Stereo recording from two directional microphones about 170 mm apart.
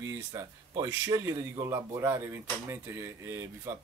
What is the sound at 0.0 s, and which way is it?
Speech, 15° right (ahead or behind).